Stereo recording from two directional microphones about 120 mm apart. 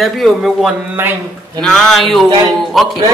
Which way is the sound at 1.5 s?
5° left (ahead or behind).